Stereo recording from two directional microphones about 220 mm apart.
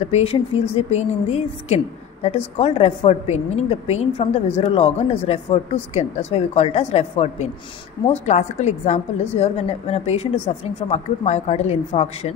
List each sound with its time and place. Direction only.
0.1 s a woman's voice: 25° left (ahead or behind)